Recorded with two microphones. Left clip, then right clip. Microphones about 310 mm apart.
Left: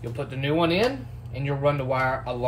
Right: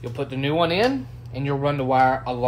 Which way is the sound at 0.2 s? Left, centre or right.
Right.